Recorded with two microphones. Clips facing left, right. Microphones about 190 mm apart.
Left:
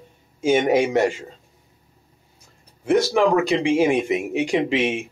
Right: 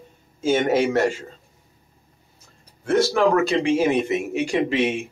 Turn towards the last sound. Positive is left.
turn(degrees=15)  # may be behind; listen again after turning